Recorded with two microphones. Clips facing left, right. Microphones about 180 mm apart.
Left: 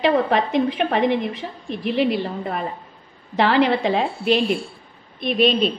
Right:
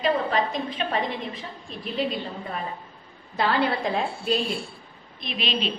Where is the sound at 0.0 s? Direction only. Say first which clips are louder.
Left 5 dB; 75° left (ahead or behind).